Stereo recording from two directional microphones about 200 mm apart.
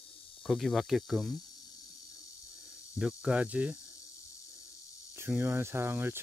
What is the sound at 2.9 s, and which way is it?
Speech, 5° right (ahead or behind).